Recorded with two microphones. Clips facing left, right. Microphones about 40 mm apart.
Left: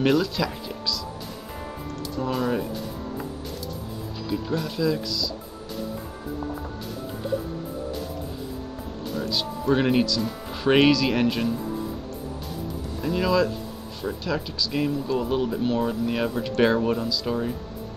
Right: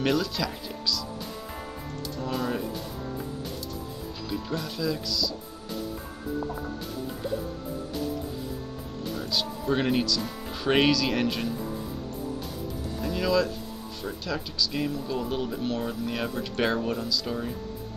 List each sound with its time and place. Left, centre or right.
0.0 s speech: centre
2.2 s speech: centre
4.3 s speech: centre
9.1 s speech: centre
13.0 s speech: centre